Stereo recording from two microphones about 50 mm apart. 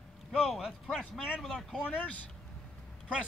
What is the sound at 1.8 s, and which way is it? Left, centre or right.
Speech, left.